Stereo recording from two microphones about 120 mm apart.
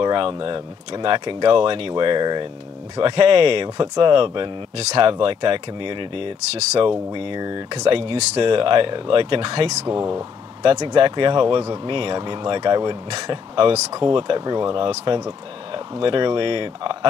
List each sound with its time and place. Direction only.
0.0 s speech: 45° right (ahead or behind)
7.1 s speech: 40° right (ahead or behind)
7.9 s speech: 45° right (ahead or behind)
9.8 s speech: 25° right (ahead or behind)
10.8 s speech: 40° right (ahead or behind)